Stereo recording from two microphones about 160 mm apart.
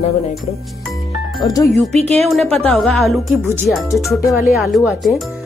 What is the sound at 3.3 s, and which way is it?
Speech, 15° right (ahead or behind).